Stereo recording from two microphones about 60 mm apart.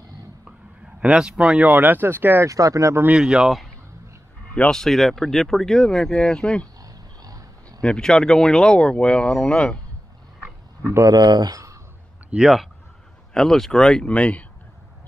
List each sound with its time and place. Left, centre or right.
1.0 s speech: centre; by 2.4 s right
2.4 s speech: right
3.1 s speech: centre
4.6 s speech: centre
6.8 s a sound: right
7.8 s speech: centre
11.1 s speech: right
12.4 s speech: centre
13.3 s speech: centre
14.1 s speech: left